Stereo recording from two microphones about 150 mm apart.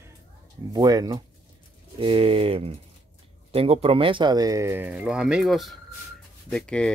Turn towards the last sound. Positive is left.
turn(degrees=5)  # may be behind; listen again after turning